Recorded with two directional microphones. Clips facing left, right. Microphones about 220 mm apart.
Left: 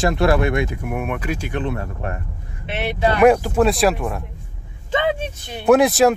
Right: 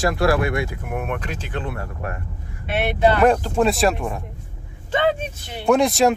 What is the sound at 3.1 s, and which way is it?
Speech, 10° left (ahead or behind).